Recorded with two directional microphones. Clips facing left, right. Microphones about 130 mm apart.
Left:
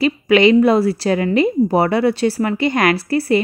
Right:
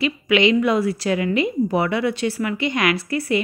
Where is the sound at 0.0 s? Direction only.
40° left (ahead or behind).